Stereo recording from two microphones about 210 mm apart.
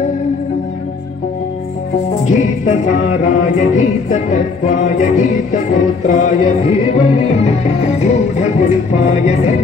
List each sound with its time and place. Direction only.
2.2 s music: 35° left (ahead or behind)